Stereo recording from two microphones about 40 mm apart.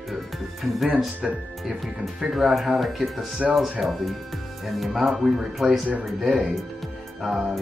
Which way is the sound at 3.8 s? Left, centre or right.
Centre.